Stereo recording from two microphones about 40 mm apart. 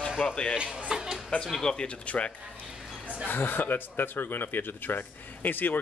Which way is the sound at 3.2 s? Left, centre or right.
Left.